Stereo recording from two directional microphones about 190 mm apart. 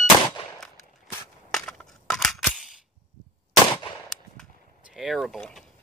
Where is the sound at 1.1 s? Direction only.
5° left (ahead or behind).